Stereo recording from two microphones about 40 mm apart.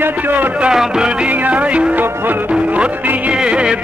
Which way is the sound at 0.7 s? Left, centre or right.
Right.